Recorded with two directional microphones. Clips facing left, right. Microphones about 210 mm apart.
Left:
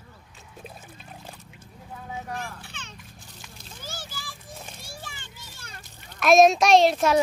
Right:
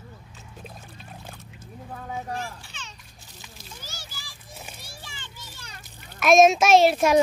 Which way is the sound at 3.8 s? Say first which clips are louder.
Left 5 dB; 50° left (ahead or behind).